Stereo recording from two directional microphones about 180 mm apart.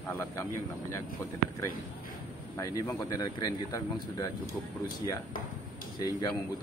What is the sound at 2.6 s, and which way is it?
Speech, 20° left (ahead or behind).